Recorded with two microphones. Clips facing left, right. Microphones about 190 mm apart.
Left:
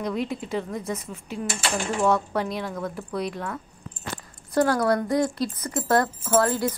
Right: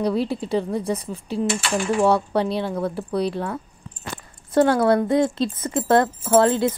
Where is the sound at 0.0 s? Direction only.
35° right (ahead or behind).